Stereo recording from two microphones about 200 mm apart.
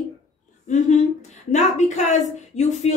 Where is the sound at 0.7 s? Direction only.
35° left (ahead or behind).